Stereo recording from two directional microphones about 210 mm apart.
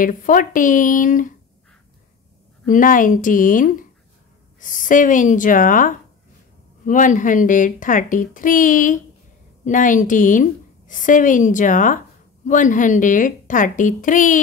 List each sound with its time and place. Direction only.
0.0 s a woman's voice: 40° left (ahead or behind)
2.7 s a woman's voice: 40° left (ahead or behind)